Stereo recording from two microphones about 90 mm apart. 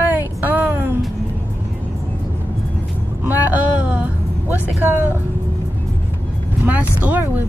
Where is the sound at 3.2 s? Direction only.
20° right (ahead or behind).